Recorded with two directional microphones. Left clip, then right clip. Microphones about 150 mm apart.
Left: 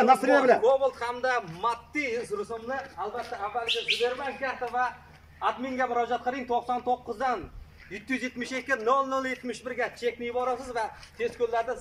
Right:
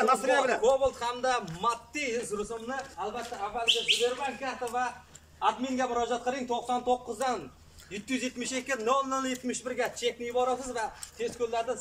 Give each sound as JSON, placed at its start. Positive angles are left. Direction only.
{"t": 0.0, "sound": "a man's voice", "side_deg": 55}
{"t": 0.6, "sound": "a man's voice", "side_deg": 0}
{"t": 3.6, "sound": "a man's voice", "side_deg": -5}